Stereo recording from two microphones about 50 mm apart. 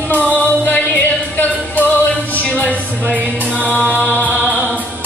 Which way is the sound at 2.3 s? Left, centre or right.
Left.